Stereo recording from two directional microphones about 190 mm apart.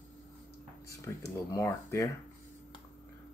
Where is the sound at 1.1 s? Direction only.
15° left (ahead or behind).